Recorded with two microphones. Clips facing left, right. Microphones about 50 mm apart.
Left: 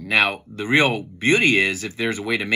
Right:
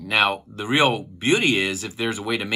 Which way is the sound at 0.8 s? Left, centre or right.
Left.